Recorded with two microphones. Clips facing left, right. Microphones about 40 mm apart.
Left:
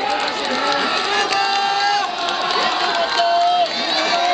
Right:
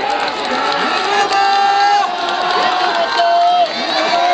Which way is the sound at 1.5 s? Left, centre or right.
Centre.